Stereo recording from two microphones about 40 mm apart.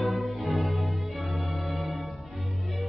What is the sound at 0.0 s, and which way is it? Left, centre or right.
Music, centre.